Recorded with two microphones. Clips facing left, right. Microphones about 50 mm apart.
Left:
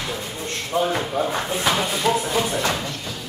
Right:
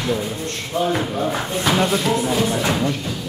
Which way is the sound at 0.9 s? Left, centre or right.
Centre.